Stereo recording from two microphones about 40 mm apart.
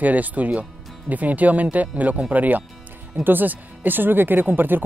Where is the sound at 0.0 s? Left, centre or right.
Right.